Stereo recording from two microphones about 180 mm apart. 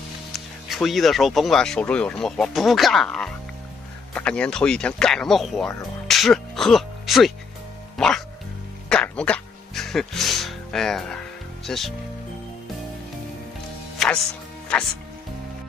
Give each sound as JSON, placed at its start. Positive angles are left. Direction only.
{"t": 0.3, "sound": "speech", "side_deg": 0}
{"t": 8.8, "sound": "music", "side_deg": 5}
{"t": 13.9, "sound": "music", "side_deg": 5}